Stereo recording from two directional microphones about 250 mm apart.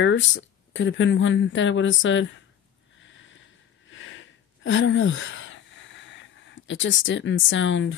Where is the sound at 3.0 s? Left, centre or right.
Left.